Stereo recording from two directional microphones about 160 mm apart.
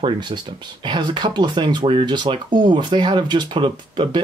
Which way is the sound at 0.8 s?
30° right (ahead or behind).